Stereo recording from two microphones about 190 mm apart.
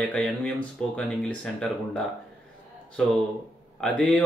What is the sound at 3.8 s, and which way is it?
Speech, 5° left (ahead or behind).